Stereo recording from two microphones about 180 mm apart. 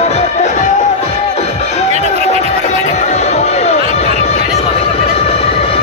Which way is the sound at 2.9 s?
40° left (ahead or behind).